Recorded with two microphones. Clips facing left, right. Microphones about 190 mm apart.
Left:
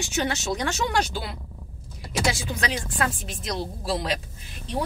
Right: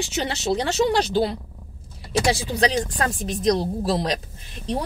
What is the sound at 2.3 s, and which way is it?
Speech, 35° right (ahead or behind).